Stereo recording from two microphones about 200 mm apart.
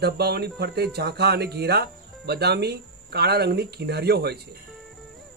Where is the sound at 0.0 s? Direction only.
55° right (ahead or behind).